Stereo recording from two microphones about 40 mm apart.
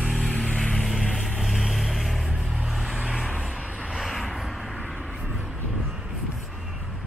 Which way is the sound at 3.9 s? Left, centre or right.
Centre.